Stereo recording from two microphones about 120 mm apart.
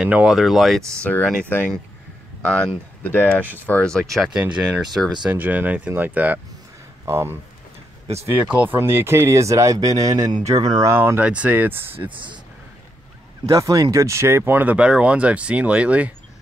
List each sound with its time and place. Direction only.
0.0 s speech: 10° right (ahead or behind)
1.0 s speech: 15° left (ahead or behind)
5.2 s speech: 15° right (ahead or behind); by 10.9 s 30° right (ahead or behind)
10.9 s speech: 20° right (ahead or behind)
13.5 s speech: 30° right (ahead or behind); by 16.1 s 10° right (ahead or behind)